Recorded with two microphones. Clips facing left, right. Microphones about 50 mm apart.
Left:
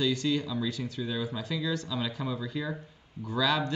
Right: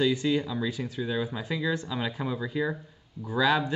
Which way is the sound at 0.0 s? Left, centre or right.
Centre.